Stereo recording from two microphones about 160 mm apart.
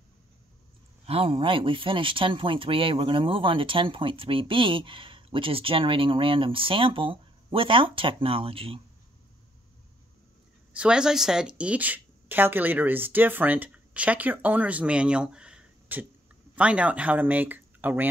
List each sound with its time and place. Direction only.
1.0 s speech: 35° right (ahead or behind)
10.7 s speech: 5° right (ahead or behind)